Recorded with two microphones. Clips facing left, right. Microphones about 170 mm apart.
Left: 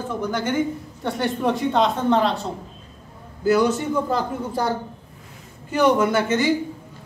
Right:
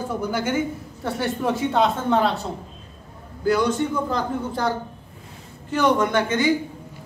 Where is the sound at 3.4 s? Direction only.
5° left (ahead or behind).